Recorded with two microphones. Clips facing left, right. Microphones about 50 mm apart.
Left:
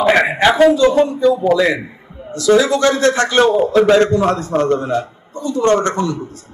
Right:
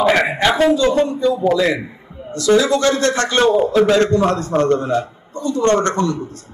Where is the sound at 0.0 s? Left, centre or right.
Centre.